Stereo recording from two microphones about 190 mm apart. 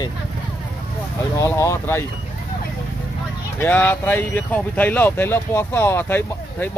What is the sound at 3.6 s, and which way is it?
Speech, 10° left (ahead or behind).